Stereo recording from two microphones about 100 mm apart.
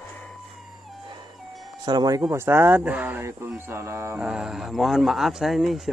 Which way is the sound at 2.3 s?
25° right (ahead or behind).